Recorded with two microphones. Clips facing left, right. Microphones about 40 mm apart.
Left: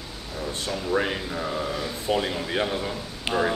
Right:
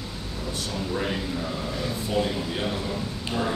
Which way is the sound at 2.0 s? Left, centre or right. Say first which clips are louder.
Left 2 dB; left.